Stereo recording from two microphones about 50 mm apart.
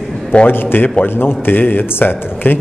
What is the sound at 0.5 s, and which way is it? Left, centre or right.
A man's voice, left.